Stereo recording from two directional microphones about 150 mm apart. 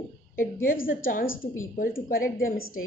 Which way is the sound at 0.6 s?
70° left (ahead or behind).